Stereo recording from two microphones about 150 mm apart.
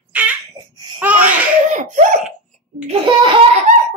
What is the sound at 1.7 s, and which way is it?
Laughter, 55° right (ahead or behind).